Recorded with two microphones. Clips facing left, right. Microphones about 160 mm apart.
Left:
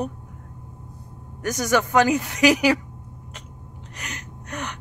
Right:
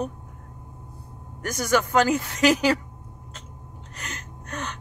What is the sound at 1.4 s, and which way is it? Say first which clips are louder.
Speech: left 1 dB; 15° left (ahead or behind).